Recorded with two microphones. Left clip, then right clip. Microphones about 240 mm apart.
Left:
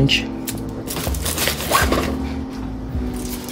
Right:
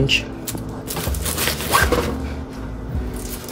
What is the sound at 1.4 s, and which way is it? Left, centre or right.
Zipper, centre.